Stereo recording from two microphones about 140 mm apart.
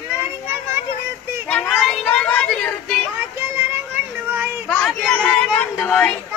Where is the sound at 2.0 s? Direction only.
10° left (ahead or behind).